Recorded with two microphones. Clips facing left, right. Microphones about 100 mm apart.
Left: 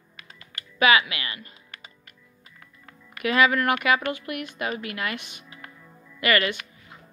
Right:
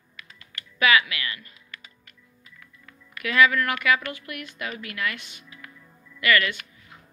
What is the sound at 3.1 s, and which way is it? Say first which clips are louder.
A woman's voice: even; 25° left (ahead or behind).